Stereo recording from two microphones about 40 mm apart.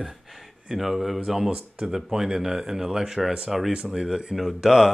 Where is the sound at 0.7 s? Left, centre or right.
Centre.